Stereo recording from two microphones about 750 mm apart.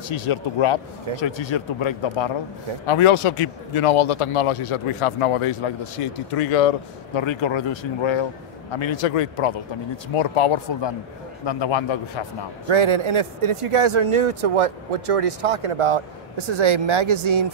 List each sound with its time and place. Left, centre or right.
0.1 s a man's voice: left
12.6 s speech: right